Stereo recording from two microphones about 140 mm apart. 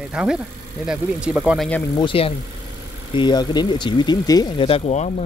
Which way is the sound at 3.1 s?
30° left (ahead or behind).